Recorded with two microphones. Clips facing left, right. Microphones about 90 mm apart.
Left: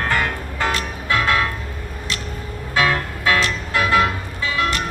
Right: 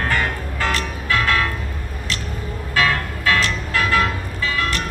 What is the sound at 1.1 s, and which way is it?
Music, 30° left (ahead or behind).